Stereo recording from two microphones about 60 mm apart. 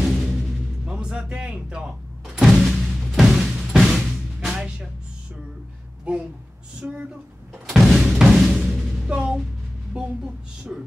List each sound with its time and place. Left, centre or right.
0.0 s music: centre
0.8 s speech: centre
2.2 s music: centre
6.1 s speech: centre
7.6 s music: centre
9.9 s speech: centre